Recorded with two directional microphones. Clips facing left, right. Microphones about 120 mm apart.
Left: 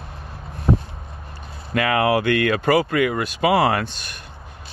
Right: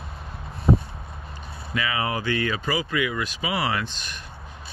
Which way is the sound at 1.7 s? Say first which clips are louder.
Left 8 dB; 65° left (ahead or behind).